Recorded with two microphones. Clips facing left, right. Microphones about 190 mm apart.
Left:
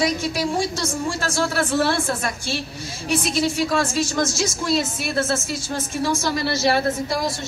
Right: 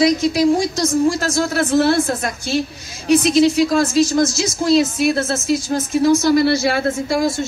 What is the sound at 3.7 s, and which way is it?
A woman's voice, 40° right (ahead or behind).